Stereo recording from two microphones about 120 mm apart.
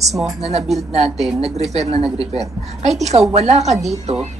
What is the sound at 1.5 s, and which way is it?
Speech, 65° right (ahead or behind).